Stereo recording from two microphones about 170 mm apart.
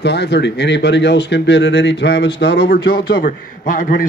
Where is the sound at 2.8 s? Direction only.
65° left (ahead or behind).